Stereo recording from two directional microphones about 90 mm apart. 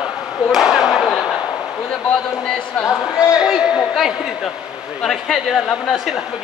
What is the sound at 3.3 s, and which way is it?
A man's voice, 5° right (ahead or behind).